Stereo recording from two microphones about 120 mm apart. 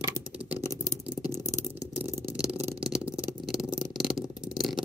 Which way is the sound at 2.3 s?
5° right (ahead or behind).